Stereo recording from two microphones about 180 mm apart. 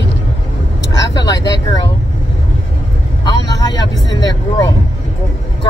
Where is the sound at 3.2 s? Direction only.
20° left (ahead or behind).